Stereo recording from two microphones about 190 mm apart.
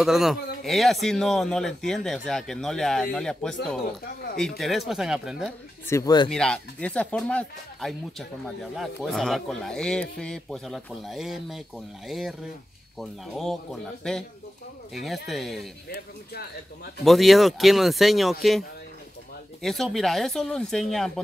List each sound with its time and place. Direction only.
0.0 s a man's voice: centre (ahead or behind)
4.6 s a man's voice: centre (ahead or behind)
5.9 s speech: 15° left (ahead or behind)
6.3 s a man's voice: 5° left (ahead or behind)
15.2 s a man's voice: centre (ahead or behind)
17.0 s a man's voice: centre (ahead or behind)
19.6 s a man's voice: centre (ahead or behind)